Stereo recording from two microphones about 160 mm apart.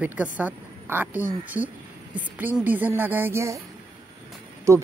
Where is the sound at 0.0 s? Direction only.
10° right (ahead or behind).